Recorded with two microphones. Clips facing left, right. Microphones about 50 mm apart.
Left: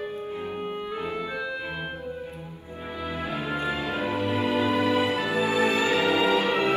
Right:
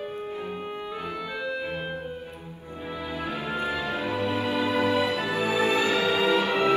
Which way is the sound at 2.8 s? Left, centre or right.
Left.